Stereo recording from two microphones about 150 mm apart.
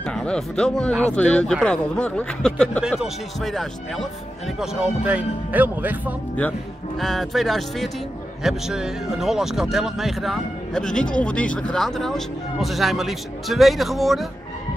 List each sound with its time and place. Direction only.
0.0 s speech: 5° left (ahead or behind); by 6.1 s 10° right (ahead or behind)
7.0 s speech: centre (ahead or behind)